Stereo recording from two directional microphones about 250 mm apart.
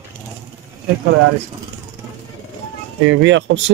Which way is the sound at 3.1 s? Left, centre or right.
Right.